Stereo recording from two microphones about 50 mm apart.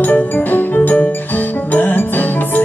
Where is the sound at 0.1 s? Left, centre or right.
Left.